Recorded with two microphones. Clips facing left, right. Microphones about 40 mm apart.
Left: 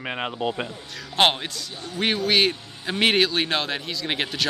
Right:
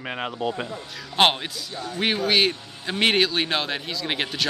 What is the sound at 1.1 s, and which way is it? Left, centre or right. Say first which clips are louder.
Speech: even; centre.